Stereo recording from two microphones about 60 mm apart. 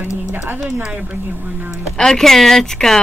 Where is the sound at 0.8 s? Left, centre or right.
Centre.